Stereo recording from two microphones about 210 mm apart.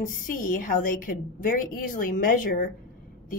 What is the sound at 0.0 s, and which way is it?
A woman's voice, 40° left (ahead or behind).